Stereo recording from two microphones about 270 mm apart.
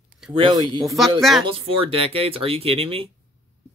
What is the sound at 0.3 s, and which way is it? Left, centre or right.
Speech, centre.